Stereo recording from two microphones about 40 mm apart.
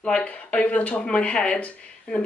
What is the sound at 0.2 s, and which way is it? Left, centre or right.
Speech, left.